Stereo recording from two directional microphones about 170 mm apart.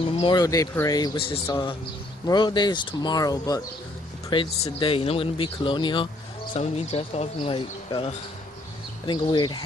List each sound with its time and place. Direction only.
0.2 s speech: 25° left (ahead or behind)